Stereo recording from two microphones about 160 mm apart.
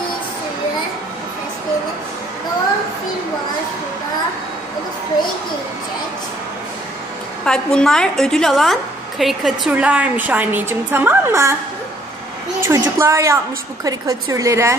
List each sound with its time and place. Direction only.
7.4 s a woman's voice: 5° left (ahead or behind); by 11.5 s 15° right (ahead or behind)
12.6 s a woman's voice: 15° right (ahead or behind)